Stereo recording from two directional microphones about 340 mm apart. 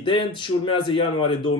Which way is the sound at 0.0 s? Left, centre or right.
Centre.